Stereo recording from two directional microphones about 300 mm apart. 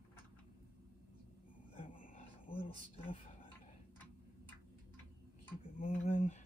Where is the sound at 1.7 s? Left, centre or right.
Left.